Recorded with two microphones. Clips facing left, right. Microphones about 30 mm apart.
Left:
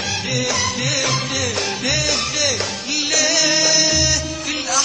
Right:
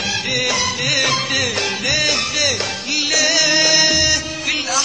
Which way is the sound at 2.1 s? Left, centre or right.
Centre.